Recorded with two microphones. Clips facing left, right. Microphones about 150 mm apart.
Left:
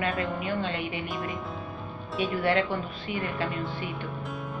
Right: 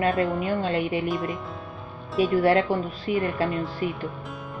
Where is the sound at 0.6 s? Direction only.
40° right (ahead or behind).